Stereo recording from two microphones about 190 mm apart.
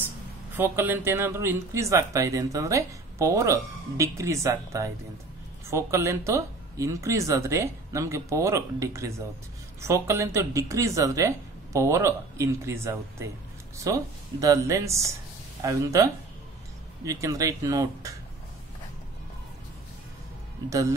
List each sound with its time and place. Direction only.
0.6 s speech: 10° right (ahead or behind)